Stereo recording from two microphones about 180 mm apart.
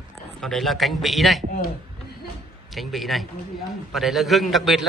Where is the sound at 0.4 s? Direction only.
Centre (ahead or behind).